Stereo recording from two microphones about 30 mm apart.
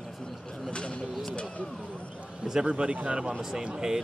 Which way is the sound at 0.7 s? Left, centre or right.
Left.